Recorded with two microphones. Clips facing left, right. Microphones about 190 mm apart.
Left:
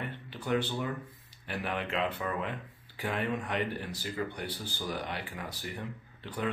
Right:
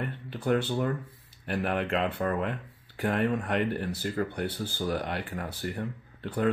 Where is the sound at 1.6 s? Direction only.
50° right (ahead or behind).